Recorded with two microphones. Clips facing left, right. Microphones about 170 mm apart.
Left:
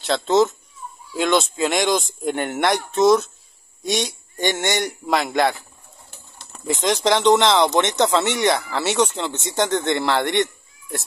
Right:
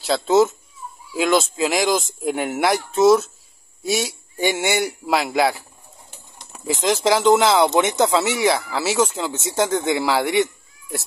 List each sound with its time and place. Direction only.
0.0 s speech: 5° right (ahead or behind)
6.0 s a sound: 15° right (ahead or behind)
6.6 s speech: centre (ahead or behind)